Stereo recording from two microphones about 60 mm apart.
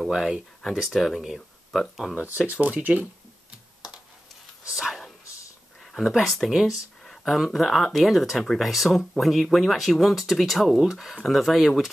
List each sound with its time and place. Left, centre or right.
0.1 s speech: centre
2.1 s speech: centre
4.6 s bow-wow: centre
5.9 s speech: centre